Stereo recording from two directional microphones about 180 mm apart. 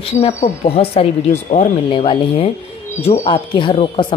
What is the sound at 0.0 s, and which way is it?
Speech, 35° left (ahead or behind).